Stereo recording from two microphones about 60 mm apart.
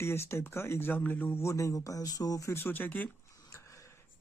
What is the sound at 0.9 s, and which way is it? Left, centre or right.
Speech, left.